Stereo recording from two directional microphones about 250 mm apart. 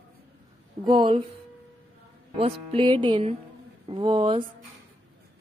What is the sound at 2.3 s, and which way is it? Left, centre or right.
Music, right.